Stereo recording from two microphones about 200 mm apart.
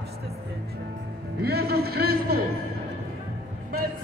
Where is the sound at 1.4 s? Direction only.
50° right (ahead or behind).